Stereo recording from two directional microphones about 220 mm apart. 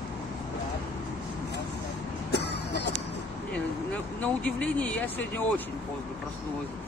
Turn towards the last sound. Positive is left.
turn(degrees=5)  # may be behind; listen again after turning